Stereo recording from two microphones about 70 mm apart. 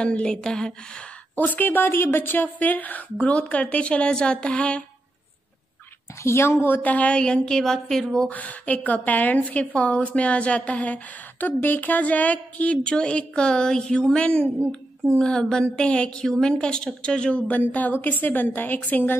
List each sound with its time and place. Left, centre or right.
0.0 s a woman's voice: centre
1.3 s a woman's voice: left
6.2 s a woman's voice: left; by 8.3 s centre
8.3 s a woman's voice: left